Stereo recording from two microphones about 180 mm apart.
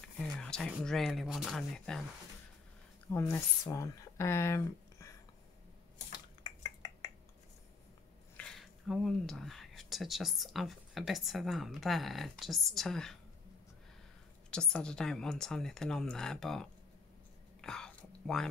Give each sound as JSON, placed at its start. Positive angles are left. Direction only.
{"t": 0.2, "sound": "speech", "side_deg": 5}
{"t": 3.1, "sound": "speech", "side_deg": 15}
{"t": 6.4, "sound": "a sound", "side_deg": 20}
{"t": 8.4, "sound": "speech", "side_deg": 0}
{"t": 14.5, "sound": "speech", "side_deg": 5}
{"t": 17.6, "sound": "whispering", "side_deg": 5}